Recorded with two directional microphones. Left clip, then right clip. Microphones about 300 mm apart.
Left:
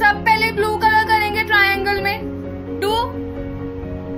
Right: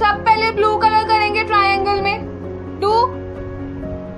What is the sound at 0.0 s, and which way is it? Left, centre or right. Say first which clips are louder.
Music: right 1 dB; centre.